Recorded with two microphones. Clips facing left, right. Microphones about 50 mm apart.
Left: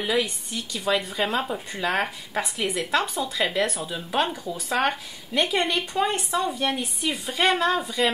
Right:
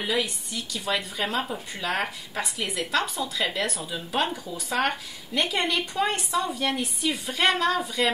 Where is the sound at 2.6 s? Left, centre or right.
Centre.